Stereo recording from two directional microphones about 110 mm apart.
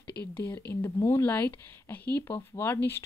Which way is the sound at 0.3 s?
20° left (ahead or behind).